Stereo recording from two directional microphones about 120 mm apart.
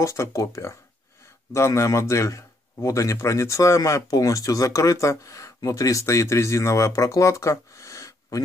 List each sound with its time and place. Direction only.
0.0 s speech: 25° left (ahead or behind)